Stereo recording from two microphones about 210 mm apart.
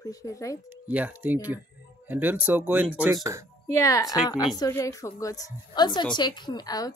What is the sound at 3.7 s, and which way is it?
A woman's voice, 15° left (ahead or behind).